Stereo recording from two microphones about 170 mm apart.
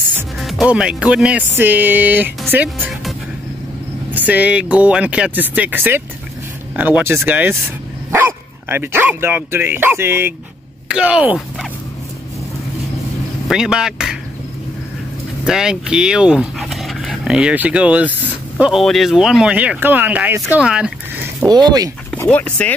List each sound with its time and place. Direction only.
0.1 s speech: centre (ahead or behind)
13.5 s speech: 5° right (ahead or behind)
15.4 s speech: 5° right (ahead or behind)
21.5 s speech: 25° right (ahead or behind)
22.1 s speech: 10° left (ahead or behind)